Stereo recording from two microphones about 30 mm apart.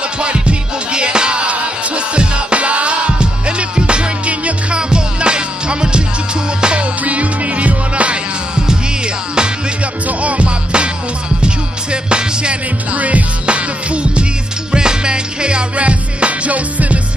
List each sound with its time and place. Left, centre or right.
0.2 s music: right
3.2 s music: right
4.3 s music: right
4.7 s music: right
7.1 s music: right
10.0 s music: right
11.4 s music: right
12.9 s music: right
13.5 s music: right
14.7 s music: right